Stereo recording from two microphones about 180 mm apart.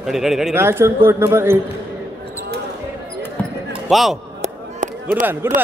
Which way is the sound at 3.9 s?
Centre (ahead or behind).